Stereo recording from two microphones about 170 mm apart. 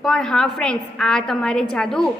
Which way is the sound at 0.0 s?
Centre (ahead or behind).